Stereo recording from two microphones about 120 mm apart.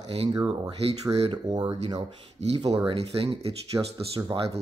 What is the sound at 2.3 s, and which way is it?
Speech, 60° right (ahead or behind).